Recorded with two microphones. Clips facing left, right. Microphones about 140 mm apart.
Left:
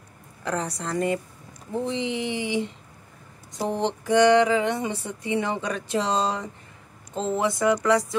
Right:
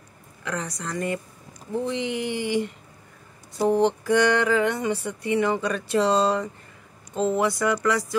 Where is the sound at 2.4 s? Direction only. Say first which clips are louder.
Right 2 dB; 55° right (ahead or behind).